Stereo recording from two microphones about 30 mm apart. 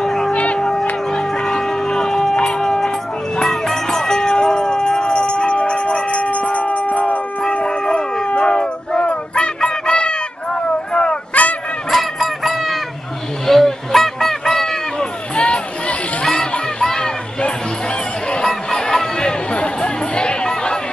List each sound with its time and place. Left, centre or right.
0.0 s music: centre
0.3 s music: left
0.6 s music: left
7.6 s howl: left
8.4 s music: left
11.4 s a sound: left
11.9 s fowl: centre
13.5 s a sound: centre; by 16.3 s left
16.8 s music: centre
18.4 s a sound: centre